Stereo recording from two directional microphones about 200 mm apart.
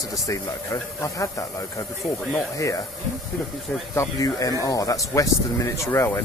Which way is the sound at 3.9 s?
15° left (ahead or behind).